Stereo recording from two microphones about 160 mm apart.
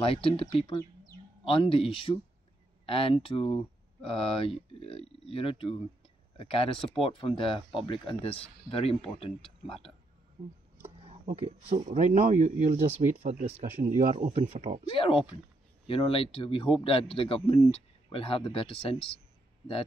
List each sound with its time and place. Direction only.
0.0 s speech: 35° left (ahead or behind)
11.2 s speech: 50° right (ahead or behind)
15.0 s speech: 35° left (ahead or behind)